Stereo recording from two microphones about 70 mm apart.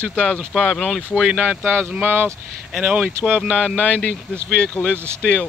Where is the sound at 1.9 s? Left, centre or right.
Right.